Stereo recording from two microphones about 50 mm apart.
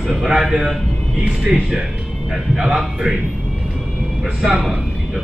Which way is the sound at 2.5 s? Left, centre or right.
Centre.